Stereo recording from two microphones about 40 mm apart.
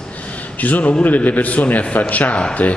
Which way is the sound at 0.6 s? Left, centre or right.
Left.